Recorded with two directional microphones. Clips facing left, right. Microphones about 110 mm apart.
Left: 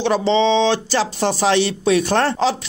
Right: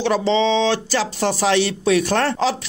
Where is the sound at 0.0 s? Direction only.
25° left (ahead or behind).